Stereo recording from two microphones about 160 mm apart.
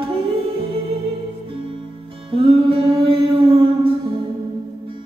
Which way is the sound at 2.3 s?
35° right (ahead or behind).